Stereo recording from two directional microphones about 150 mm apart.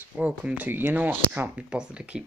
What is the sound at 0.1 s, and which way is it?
Speech, 10° right (ahead or behind).